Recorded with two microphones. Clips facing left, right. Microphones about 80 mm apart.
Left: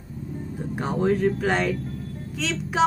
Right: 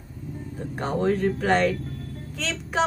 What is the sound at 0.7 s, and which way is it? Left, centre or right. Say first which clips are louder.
A woman's voice: left 1 dB; centre.